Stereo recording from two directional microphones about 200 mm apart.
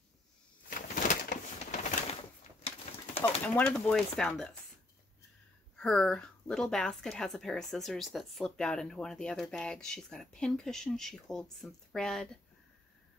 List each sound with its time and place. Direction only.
0.7 s bird: 40° left (ahead or behind)
3.4 s a woman's voice: 5° left (ahead or behind)
5.8 s a woman's voice: 5° left (ahead or behind)